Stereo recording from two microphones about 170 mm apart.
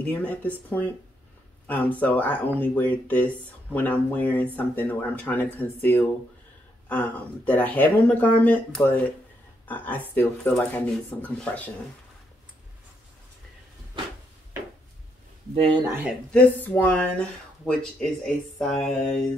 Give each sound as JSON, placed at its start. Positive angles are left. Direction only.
{"t": 0.0, "sound": "speech", "side_deg": 10}
{"t": 15.5, "sound": "speech", "side_deg": -30}
{"t": 16.3, "sound": "speech", "side_deg": 10}
{"t": 18.6, "sound": "mantra", "side_deg": 5}